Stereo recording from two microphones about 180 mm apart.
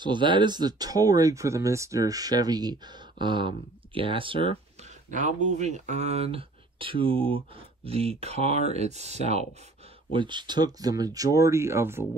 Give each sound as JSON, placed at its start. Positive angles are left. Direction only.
{"t": 0.0, "sound": "speech", "side_deg": -25}
{"t": 5.1, "sound": "speech", "side_deg": -45}
{"t": 10.1, "sound": "speech", "side_deg": -25}